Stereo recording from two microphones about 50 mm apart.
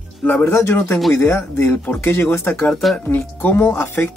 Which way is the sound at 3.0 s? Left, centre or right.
Left.